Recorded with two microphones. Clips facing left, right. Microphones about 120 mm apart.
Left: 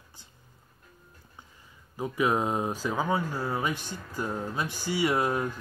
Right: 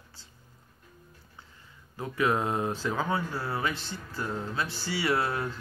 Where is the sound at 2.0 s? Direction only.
15° left (ahead or behind).